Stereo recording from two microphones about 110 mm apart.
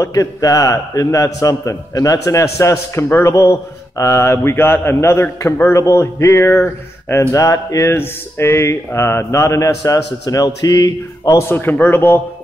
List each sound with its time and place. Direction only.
0.0 s a man's voice: 30° left (ahead or behind)